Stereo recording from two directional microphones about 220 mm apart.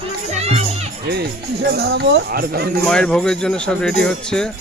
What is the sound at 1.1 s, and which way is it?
Speech, 50° right (ahead or behind).